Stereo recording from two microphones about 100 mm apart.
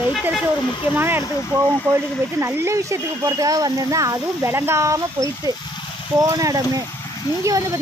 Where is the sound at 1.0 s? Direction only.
20° right (ahead or behind).